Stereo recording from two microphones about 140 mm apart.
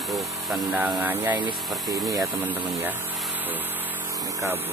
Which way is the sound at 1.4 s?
30° right (ahead or behind).